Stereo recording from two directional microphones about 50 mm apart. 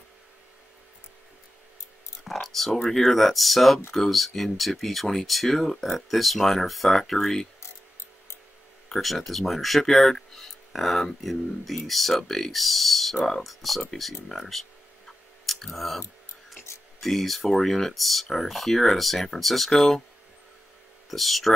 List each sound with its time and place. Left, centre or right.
2.2 s speech: centre
8.8 s speech: centre
14.3 s a sound: centre
17.0 s speech: centre
21.1 s speech: centre